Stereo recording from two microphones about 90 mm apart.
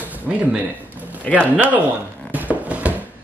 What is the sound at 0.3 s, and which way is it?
Speech, 15° right (ahead or behind).